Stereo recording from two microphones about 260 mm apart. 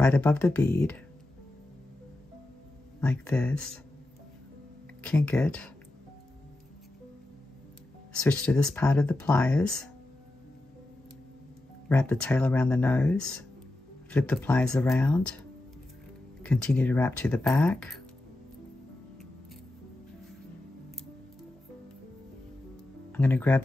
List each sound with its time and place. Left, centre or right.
0.0 s speech: centre
3.0 s speech: centre
5.0 s speech: centre
8.1 s speech: centre
11.9 s speech: centre
16.4 s speech: centre
23.1 s speech: centre